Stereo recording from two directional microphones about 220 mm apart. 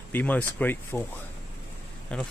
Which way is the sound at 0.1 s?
10° left (ahead or behind).